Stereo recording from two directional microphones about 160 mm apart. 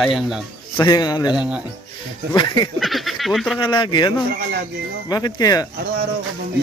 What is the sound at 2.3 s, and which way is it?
Speech, 25° left (ahead or behind).